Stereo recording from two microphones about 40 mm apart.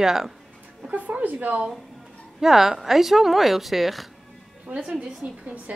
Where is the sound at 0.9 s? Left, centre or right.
Right.